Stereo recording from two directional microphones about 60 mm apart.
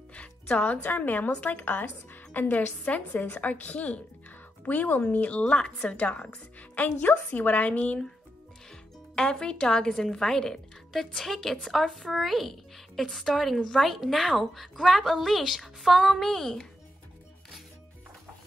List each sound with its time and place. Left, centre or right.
0.1 s a woman's voice: left
9.1 s a woman's voice: centre